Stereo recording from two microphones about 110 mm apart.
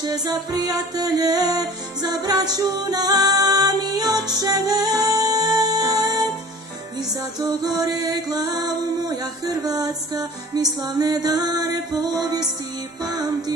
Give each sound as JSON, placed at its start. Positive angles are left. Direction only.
{"t": 0.0, "sound": "music", "side_deg": -35}